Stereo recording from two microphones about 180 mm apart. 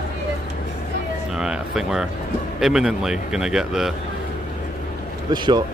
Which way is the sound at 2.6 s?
5° right (ahead or behind).